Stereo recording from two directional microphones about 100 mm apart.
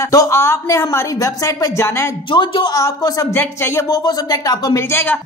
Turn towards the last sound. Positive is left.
turn(degrees=25)  # may be behind; listen again after turning